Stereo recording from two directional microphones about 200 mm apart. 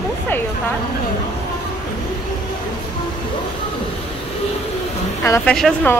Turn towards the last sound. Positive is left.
turn(degrees=5)  # may be behind; listen again after turning